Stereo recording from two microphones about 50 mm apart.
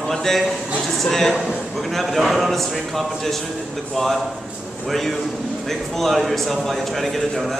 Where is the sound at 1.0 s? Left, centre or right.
Centre.